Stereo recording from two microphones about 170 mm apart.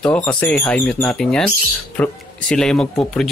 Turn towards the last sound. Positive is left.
turn(degrees=5)  # may be behind; listen again after turning